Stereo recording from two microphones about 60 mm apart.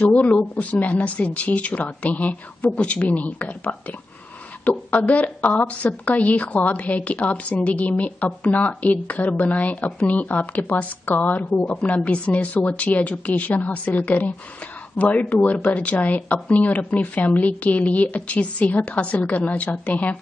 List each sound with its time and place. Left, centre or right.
0.0 s speech: left